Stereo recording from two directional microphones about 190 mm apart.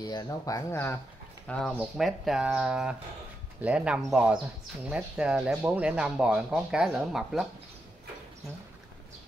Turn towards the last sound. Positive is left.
turn(degrees=-5)  # may be behind; listen again after turning